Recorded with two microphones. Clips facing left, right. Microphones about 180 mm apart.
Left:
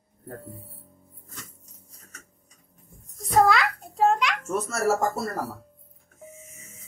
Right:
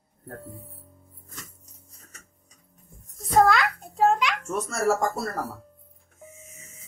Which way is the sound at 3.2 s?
Centre (ahead or behind).